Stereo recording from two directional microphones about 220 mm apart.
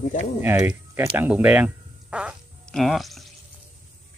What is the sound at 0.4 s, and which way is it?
Speech, 10° right (ahead or behind).